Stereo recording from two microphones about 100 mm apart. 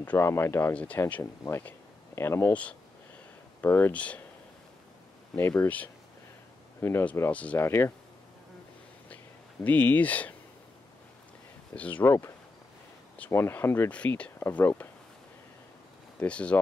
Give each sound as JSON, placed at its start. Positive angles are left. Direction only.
{"t": 0.0, "sound": "speech", "side_deg": 20}
{"t": 1.6, "sound": "a sound", "side_deg": 20}
{"t": 3.6, "sound": "speech", "side_deg": 20}
{"t": 5.3, "sound": "speech", "side_deg": 20}
{"t": 6.8, "sound": "speech", "side_deg": 25}
{"t": 7.2, "sound": "speech", "side_deg": 15}
{"t": 7.6, "sound": "speech", "side_deg": 25}
{"t": 9.1, "sound": "whispering", "side_deg": 15}
{"t": 11.7, "sound": "speech", "side_deg": 15}
{"t": 16.2, "sound": "speech", "side_deg": 10}